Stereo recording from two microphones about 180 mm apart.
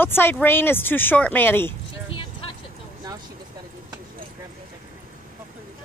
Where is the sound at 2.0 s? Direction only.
30° left (ahead or behind).